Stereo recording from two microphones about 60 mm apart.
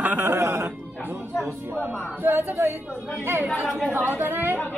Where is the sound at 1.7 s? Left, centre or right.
Right.